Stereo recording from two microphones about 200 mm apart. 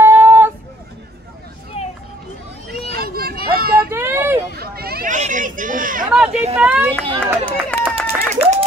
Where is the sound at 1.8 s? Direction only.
30° left (ahead or behind).